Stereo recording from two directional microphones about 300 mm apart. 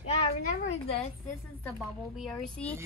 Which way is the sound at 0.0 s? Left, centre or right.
Left.